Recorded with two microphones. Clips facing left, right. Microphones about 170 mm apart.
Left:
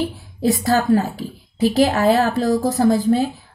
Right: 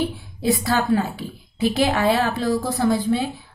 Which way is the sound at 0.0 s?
40° left (ahead or behind).